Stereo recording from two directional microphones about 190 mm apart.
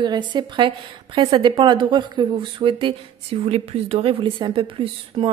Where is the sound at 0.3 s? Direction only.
25° right (ahead or behind).